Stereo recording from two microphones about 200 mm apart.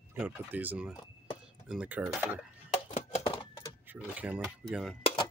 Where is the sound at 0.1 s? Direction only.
10° right (ahead or behind).